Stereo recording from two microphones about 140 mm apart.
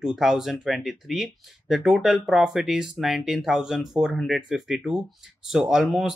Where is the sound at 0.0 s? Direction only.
5° right (ahead or behind).